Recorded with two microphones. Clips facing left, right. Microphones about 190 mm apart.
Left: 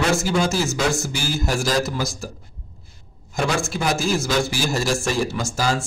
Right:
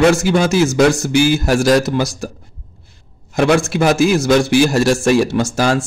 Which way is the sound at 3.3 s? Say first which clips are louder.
Right 9 dB; 70° right (ahead or behind).